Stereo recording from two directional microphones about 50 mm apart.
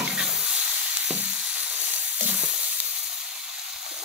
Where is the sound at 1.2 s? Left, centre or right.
Right.